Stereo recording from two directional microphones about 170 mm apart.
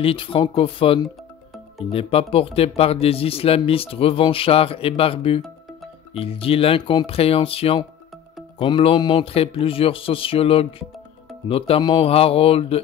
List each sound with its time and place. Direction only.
0.0 s speech: 30° left (ahead or behind)